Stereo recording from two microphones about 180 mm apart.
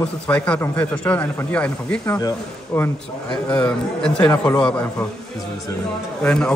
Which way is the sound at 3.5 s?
5° left (ahead or behind).